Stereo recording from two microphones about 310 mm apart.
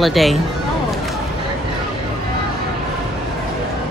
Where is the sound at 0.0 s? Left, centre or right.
Centre.